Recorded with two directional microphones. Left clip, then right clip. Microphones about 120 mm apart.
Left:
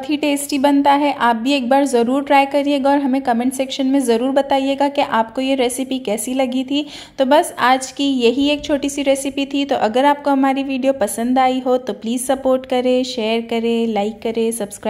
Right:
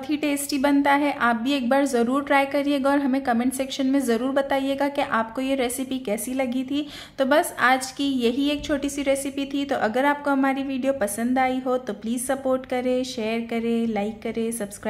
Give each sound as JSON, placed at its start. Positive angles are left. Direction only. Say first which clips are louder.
{"t": 0.1, "sound": "a woman's voice", "louder": "left 6 dB", "side_deg": 25}